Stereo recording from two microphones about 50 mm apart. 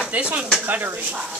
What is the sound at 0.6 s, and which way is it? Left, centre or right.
Speech, right.